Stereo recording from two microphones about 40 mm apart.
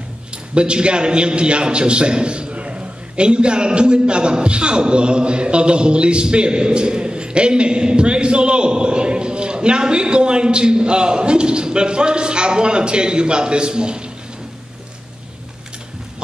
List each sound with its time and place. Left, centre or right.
0.6 s a man's voice: right